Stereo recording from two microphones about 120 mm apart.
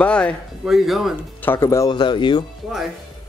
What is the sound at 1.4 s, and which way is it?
Speech, 20° left (ahead or behind).